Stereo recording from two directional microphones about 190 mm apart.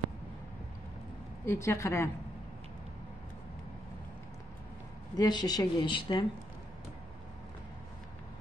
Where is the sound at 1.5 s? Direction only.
15° left (ahead or behind).